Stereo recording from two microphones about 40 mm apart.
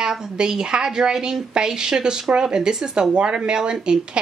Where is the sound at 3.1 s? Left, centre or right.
Right.